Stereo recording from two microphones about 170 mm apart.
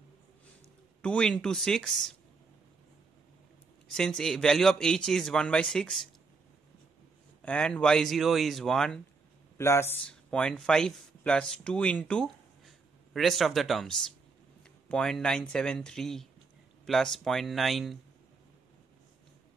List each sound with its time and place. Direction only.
1.0 s a man's voice: 5° left (ahead or behind)
3.9 s a man's voice: 5° left (ahead or behind)
7.4 s a man's voice: 5° left (ahead or behind)
9.6 s a man's voice: 15° left (ahead or behind)